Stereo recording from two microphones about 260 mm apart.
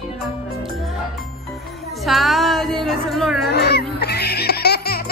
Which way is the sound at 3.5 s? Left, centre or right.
Left.